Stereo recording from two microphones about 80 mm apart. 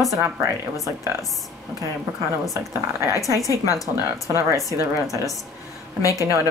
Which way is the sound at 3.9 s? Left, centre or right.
Right.